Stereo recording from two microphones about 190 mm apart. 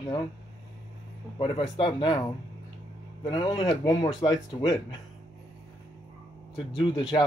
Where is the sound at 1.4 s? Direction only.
25° left (ahead or behind).